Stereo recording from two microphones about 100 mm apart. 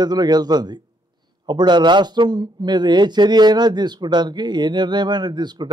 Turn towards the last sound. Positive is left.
turn(degrees=-45)  # may be behind; listen again after turning